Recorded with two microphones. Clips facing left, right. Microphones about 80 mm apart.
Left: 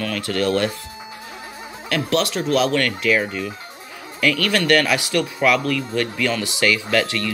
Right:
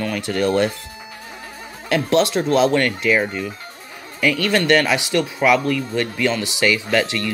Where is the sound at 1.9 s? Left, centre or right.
Right.